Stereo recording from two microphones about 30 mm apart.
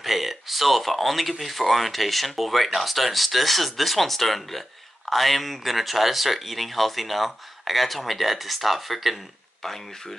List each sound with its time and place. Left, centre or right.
0.0 s speech: centre
9.6 s speech: centre